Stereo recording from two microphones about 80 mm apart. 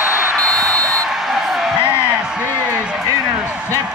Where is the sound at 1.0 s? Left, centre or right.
Centre.